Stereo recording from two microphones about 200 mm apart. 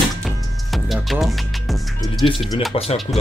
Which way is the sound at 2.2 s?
30° left (ahead or behind).